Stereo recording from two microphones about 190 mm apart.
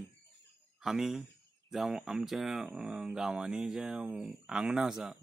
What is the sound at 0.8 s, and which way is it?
Speech, centre (ahead or behind).